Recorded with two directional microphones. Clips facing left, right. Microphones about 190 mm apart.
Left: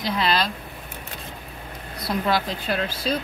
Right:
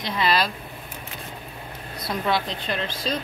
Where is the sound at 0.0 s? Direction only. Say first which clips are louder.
Even; centre (ahead or behind).